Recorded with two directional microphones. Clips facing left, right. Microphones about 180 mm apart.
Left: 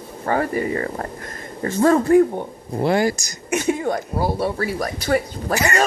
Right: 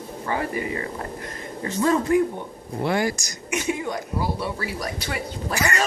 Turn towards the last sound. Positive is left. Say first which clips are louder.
# left 9 dB
turn(degrees=45)  # may be behind; listen again after turning